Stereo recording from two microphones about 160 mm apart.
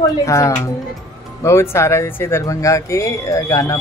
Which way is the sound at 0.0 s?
20° left (ahead or behind).